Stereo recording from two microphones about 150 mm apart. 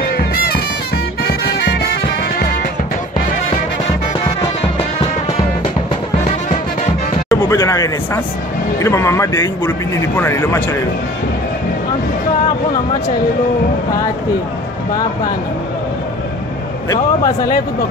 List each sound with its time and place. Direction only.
0.0 s bagpipes: 80° left
1.2 s music: 90° left
7.2 s a sound: 25° left (ahead or behind)
8.7 s a man's voice: 20° left (ahead or behind)
16.9 s a man's voice: 25° left (ahead or behind)